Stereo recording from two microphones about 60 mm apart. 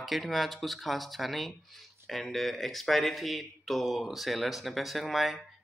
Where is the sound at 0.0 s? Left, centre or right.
Centre.